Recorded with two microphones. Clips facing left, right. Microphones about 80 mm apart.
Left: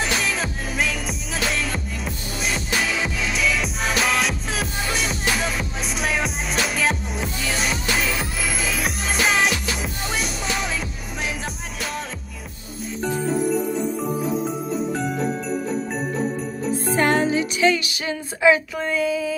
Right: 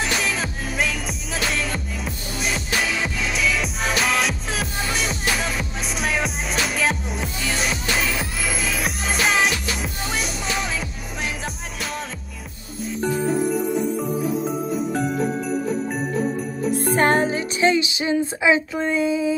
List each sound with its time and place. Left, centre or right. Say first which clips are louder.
0.0 s music: even; centre
16.9 s speech: even; right